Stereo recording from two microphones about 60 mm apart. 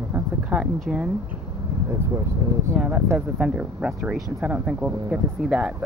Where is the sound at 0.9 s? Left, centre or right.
Centre.